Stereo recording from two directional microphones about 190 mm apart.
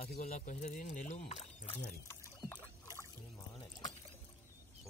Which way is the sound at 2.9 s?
15° left (ahead or behind).